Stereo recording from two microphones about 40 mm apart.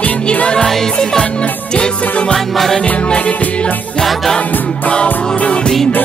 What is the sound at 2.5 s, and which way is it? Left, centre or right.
Music, centre.